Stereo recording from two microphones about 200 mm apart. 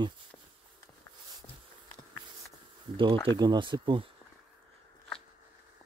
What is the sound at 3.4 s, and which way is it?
Speech, 20° right (ahead or behind).